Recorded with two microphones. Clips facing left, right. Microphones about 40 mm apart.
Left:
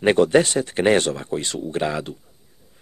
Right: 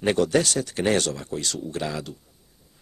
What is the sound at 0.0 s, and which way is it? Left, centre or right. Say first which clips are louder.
Speech: left 5 dB; left.